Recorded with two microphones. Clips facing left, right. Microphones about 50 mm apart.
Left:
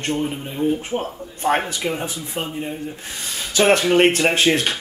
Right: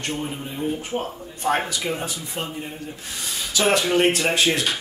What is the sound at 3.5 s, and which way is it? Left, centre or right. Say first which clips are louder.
Speech: left 4 dB; left.